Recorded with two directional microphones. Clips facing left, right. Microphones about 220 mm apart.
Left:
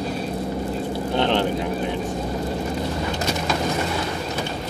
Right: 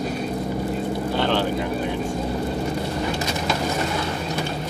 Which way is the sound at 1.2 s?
20° left (ahead or behind).